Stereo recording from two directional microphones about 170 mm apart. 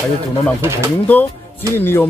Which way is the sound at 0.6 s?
15° right (ahead or behind).